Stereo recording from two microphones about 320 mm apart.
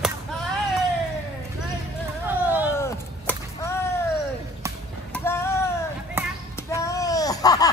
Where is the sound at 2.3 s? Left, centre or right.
Centre.